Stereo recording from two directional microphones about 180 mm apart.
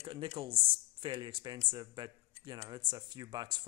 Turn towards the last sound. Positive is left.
turn(degrees=-20)  # may be behind; listen again after turning